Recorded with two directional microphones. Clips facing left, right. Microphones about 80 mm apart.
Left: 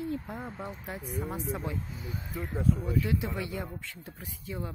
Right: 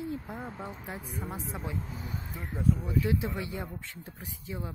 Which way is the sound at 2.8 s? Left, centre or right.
Right.